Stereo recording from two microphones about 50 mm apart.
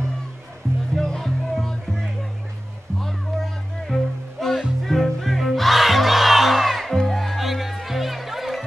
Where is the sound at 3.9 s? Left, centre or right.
Centre.